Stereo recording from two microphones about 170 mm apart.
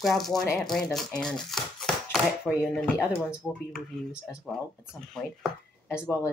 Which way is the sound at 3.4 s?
20° left (ahead or behind).